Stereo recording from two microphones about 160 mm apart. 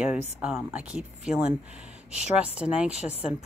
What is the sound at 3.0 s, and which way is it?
Speech, 40° left (ahead or behind).